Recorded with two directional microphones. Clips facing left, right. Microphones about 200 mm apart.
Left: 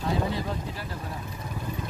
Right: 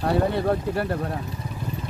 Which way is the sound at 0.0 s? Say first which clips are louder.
Right 7 dB; 65° right (ahead or behind).